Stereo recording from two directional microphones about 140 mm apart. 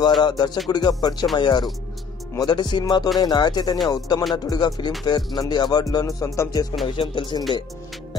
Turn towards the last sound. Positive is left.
turn(degrees=35)  # may be behind; listen again after turning